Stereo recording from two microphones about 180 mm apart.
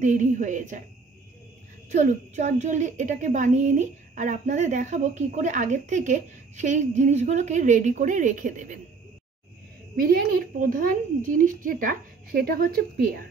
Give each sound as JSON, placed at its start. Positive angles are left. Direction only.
{"t": 0.0, "sound": "a woman's voice", "side_deg": -45}
{"t": 1.9, "sound": "a woman's voice", "side_deg": -40}
{"t": 9.9, "sound": "a woman's voice", "side_deg": -55}